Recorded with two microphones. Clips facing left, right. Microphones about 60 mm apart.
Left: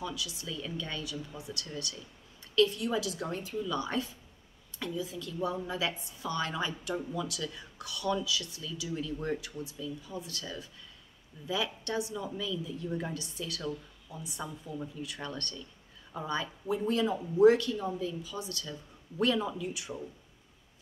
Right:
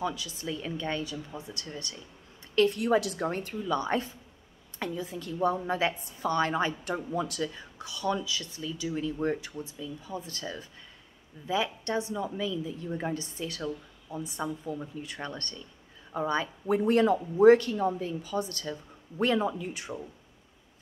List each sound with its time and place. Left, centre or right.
0.0 s a woman's voice: right
2.5 s a woman's voice: right
3.7 s a woman's voice: right
16.6 s a woman's voice: right
17.4 s a woman's voice: right